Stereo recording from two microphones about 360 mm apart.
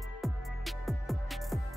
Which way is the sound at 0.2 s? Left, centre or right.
Centre.